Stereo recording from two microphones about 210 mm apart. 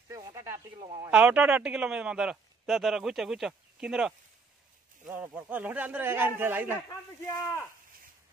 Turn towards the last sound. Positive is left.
turn(degrees=15)  # may be behind; listen again after turning